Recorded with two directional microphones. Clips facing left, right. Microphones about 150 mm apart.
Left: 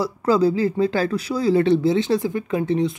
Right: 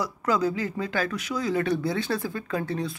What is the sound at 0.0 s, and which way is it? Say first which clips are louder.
Speech: left 7 dB; 30° left (ahead or behind).